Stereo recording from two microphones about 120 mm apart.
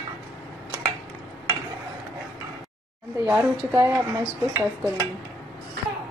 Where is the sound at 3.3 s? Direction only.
15° right (ahead or behind).